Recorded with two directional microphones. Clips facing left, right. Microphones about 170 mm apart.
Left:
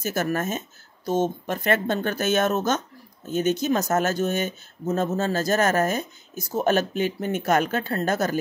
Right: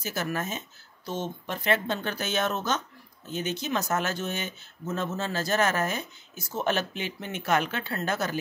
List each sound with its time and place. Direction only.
0.0 s speech: 45° left (ahead or behind)